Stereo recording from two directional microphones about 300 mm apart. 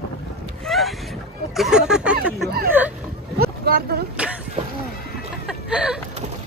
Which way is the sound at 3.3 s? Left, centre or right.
Right.